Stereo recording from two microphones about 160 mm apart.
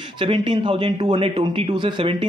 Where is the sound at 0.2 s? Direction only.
30° right (ahead or behind).